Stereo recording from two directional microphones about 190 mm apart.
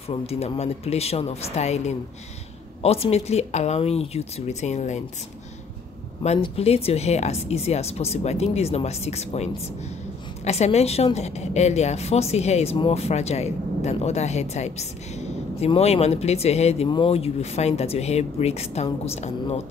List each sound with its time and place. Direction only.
0.3 s a woman's voice: 35° left (ahead or behind)
6.2 s a woman's voice: 30° left (ahead or behind)